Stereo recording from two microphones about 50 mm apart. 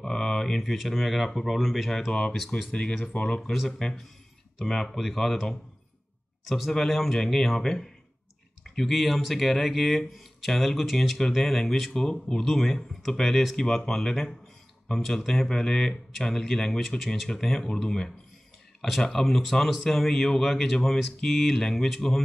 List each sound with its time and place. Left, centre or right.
0.0 s speech: centre
2.7 s speech: left
3.5 s a man's voice: centre